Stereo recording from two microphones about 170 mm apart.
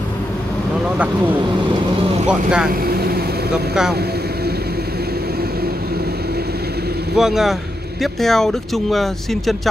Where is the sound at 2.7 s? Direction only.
60° right (ahead or behind).